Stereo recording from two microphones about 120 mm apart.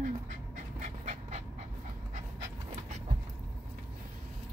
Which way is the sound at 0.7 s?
80° right.